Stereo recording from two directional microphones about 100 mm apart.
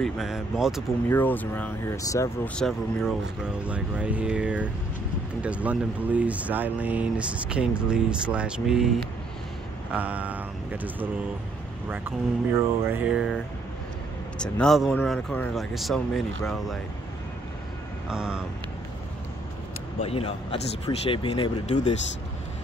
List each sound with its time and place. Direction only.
0.0 s speech: centre (ahead or behind)
1.0 s speech: 20° left (ahead or behind)
2.0 s speech: 30° left (ahead or behind)
2.4 s speech: 5° left (ahead or behind)
3.4 s speech: 10° right (ahead or behind)
9.9 s speech: 15° right (ahead or behind)
12.5 s mantra: 25° right (ahead or behind)
13.0 s speech: 5° right (ahead or behind)
14.4 s speech: 10° left (ahead or behind)
18.0 s speech: 10° right (ahead or behind)
20.0 s speech: 70° left (ahead or behind); by 21.9 s 55° left (ahead or behind)